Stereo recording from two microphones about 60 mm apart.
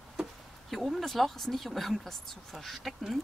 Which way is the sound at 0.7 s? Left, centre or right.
Centre.